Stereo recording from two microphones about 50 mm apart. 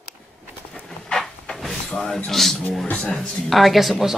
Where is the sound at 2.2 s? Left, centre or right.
Centre.